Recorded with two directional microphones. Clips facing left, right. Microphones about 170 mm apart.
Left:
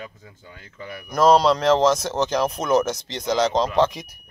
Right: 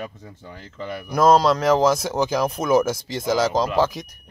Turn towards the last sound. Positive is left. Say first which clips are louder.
# left 1 dB
turn(degrees=5)  # may be behind; listen again after turning